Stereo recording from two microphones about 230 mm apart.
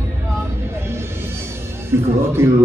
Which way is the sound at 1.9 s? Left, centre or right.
Centre.